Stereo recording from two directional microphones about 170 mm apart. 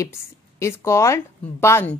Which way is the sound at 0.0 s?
15° left (ahead or behind).